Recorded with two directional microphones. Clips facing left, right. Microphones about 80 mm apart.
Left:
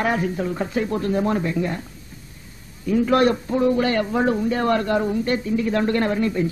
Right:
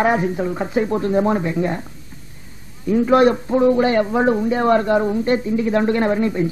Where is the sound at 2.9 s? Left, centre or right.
Centre.